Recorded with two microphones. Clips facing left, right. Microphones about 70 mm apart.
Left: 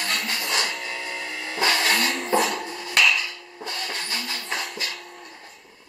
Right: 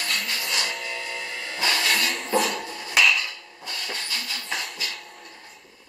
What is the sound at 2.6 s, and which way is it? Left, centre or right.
Music, centre.